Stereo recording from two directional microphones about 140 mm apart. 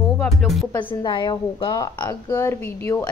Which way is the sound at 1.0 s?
35° left (ahead or behind).